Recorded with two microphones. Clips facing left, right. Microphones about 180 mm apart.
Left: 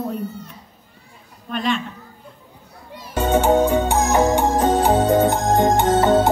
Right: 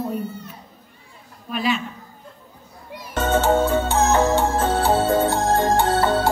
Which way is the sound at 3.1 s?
15° left (ahead or behind).